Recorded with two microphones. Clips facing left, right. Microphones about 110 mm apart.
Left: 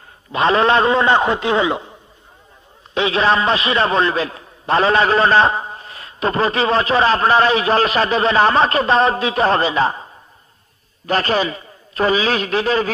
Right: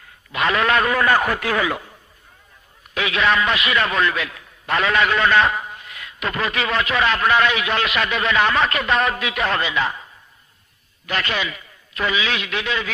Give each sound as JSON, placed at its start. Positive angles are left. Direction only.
{"t": 0.3, "sound": "a man's voice", "side_deg": 30}